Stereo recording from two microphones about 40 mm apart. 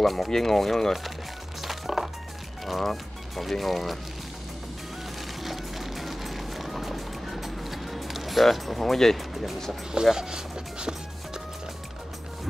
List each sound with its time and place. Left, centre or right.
0.0 s speech: centre
1.6 s music: centre
2.6 s speech: centre
5.4 s music: centre
10.1 s music: centre